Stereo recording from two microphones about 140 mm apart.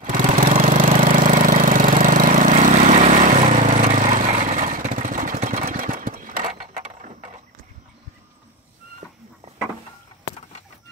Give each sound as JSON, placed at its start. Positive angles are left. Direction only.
{"t": 0.0, "sound": "lawn mower", "side_deg": -70}
{"t": 0.7, "sound": "engine", "side_deg": -75}